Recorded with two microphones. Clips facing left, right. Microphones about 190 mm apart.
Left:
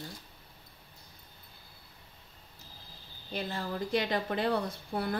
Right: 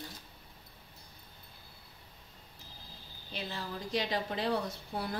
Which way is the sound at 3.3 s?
50° left (ahead or behind).